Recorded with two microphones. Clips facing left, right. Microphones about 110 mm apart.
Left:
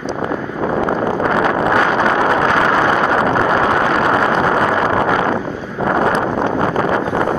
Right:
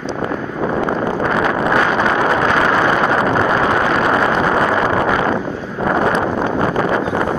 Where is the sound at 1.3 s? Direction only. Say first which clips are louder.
Left 1 dB; 30° left (ahead or behind).